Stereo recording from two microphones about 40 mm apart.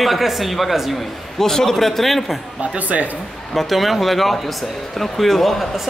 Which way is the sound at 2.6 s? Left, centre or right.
Right.